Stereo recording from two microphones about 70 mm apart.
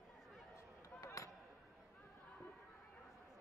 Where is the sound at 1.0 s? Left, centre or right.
Left.